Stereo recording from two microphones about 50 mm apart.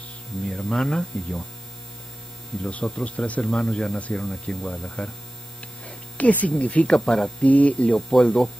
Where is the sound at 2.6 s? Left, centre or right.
Left.